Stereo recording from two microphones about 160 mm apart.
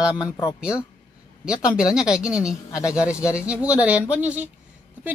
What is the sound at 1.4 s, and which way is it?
Speech, 5° right (ahead or behind).